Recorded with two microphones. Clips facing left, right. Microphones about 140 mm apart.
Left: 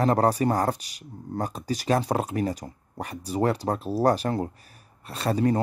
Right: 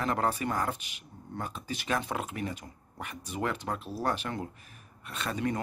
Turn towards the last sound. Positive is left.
turn(degrees=35)  # may be behind; listen again after turning